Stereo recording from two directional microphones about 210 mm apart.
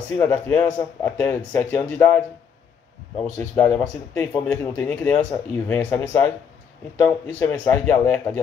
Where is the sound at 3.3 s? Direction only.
5° left (ahead or behind).